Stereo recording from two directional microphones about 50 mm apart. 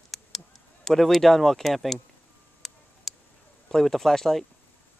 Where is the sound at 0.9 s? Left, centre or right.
Centre.